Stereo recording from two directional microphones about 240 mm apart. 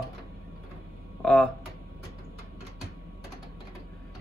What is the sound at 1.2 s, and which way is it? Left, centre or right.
Speech, centre.